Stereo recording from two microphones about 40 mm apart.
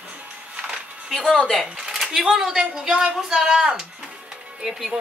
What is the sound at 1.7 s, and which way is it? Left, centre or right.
Speech, centre.